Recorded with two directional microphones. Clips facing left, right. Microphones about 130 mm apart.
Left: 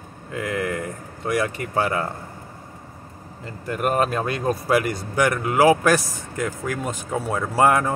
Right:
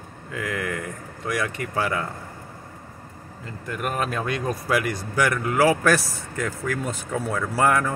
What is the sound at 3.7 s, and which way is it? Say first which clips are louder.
Speech: left 5 dB; 40° left (ahead or behind).